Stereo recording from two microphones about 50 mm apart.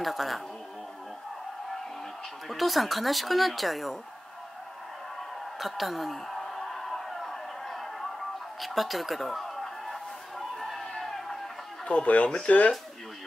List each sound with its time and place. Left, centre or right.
0.0 s speech: centre
2.4 s speech: centre
5.6 s a sound: centre
8.5 s music: centre
10.5 s a sound: centre
11.8 s speech: left